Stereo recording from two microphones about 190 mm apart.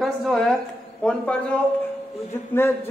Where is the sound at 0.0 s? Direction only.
Centre (ahead or behind).